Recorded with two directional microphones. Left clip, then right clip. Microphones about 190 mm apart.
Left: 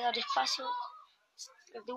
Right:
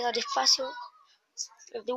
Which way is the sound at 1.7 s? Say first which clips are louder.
Right 9 dB; 10° right (ahead or behind).